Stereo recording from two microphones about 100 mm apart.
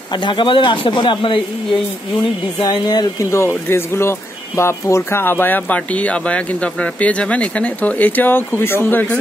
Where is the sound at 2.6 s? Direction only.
45° left (ahead or behind).